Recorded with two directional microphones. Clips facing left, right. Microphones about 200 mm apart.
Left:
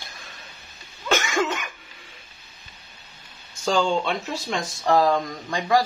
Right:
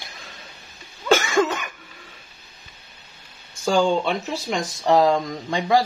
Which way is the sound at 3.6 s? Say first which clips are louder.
Right 3 dB; 15° right (ahead or behind).